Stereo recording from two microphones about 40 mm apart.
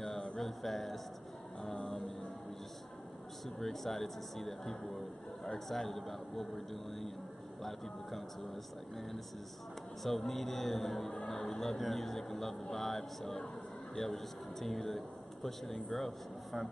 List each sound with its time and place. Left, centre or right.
0.0 s music: centre
0.4 s a sound: centre
1.6 s music: centre
3.4 s a man's voice: centre